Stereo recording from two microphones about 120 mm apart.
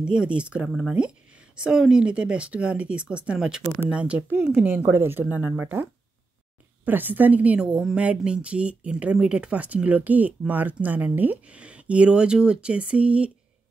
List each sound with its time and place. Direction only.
0.0 s a woman's voice: 10° right (ahead or behind)